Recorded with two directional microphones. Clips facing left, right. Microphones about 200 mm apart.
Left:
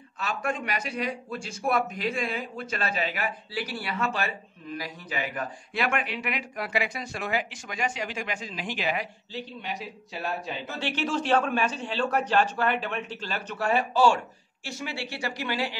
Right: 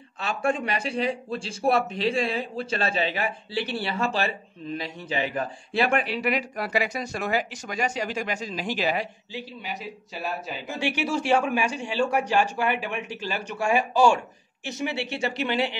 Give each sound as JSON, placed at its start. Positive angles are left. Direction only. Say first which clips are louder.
{"t": 0.2, "sound": "a man's voice", "louder": "right 4 dB", "side_deg": -30}
{"t": 9.3, "sound": "a man's voice", "louder": "even", "side_deg": 0}
{"t": 10.7, "sound": "a man's voice", "louder": "right 3 dB", "side_deg": -10}